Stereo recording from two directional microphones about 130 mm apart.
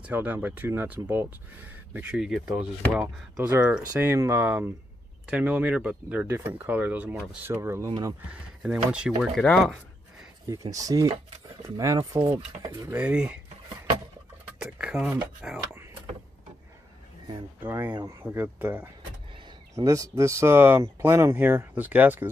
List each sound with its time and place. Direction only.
0.0 s speech: 10° right (ahead or behind)
8.2 s speech: 10° right (ahead or behind)
9.3 s speech: 5° left (ahead or behind)
10.5 s speech: 25° right (ahead or behind)
12.9 s speech: 10° right (ahead or behind)
14.6 s speech: 5° right (ahead or behind)
17.6 s speech: 15° right (ahead or behind)